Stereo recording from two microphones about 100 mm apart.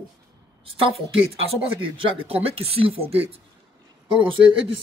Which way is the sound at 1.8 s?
65° right (ahead or behind).